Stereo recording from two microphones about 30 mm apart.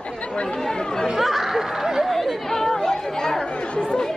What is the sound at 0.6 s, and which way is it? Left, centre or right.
Chatter, left.